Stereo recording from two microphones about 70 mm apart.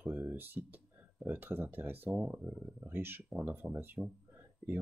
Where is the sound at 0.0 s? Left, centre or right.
Right.